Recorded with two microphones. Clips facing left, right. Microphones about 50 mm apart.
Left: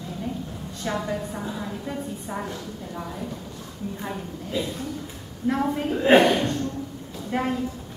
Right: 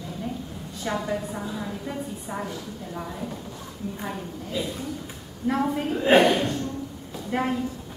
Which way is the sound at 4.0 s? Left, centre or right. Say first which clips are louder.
Even; centre.